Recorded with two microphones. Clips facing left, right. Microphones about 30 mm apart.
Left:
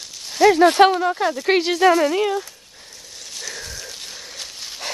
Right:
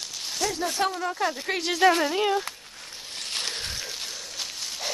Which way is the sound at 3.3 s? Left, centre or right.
Right.